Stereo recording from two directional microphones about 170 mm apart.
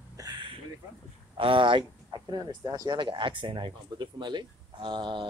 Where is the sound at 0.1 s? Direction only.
25° right (ahead or behind).